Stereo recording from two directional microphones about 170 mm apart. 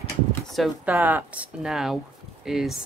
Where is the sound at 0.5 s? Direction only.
Centre (ahead or behind).